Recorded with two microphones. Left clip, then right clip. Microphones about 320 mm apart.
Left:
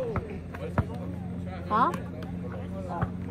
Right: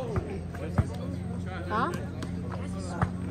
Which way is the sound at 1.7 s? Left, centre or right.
Left.